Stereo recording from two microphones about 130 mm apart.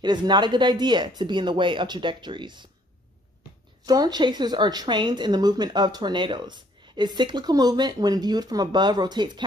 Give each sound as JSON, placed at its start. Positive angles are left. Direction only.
{"t": 0.0, "sound": "speech", "side_deg": -35}
{"t": 3.8, "sound": "speech", "side_deg": -30}